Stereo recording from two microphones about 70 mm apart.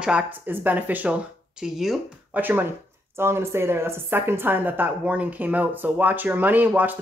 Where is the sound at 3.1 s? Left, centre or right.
Right.